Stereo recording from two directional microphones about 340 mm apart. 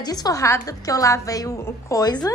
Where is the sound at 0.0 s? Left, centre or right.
Centre.